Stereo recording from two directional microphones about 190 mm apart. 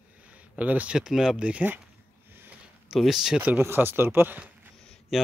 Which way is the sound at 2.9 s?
Centre (ahead or behind).